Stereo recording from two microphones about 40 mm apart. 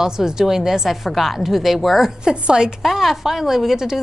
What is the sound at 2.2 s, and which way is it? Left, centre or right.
Speech, centre.